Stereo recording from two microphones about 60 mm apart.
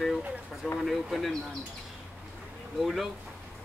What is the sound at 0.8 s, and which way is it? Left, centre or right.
Speech, centre.